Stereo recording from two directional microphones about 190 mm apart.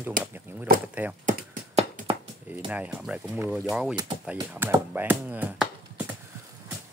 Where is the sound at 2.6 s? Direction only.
5° right (ahead or behind).